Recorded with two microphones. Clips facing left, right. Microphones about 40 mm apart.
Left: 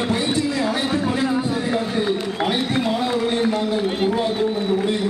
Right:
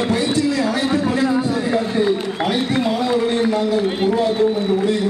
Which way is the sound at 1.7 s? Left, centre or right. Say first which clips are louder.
Right 5 dB; centre.